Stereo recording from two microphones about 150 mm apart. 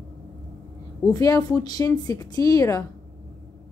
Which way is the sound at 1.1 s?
25° left (ahead or behind).